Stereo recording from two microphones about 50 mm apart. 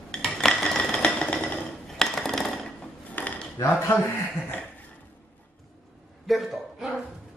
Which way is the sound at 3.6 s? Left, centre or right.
Left.